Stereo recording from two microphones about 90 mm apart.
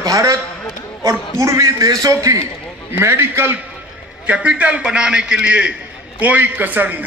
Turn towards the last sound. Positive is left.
turn(degrees=-20)  # may be behind; listen again after turning